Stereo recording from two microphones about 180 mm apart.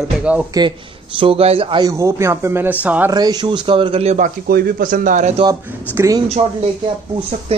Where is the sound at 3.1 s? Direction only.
20° right (ahead or behind).